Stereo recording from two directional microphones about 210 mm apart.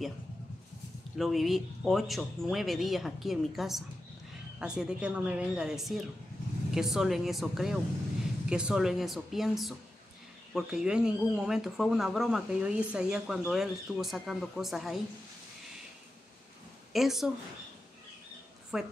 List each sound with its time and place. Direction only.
1.1 s speech: centre (ahead or behind)
16.9 s speech: centre (ahead or behind)
18.7 s speech: 5° right (ahead or behind)